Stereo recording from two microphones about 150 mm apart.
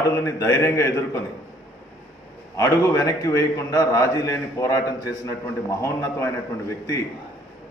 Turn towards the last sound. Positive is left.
turn(degrees=20)  # may be behind; listen again after turning